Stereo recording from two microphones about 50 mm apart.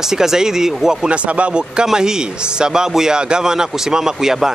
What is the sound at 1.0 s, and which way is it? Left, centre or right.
Speech, right.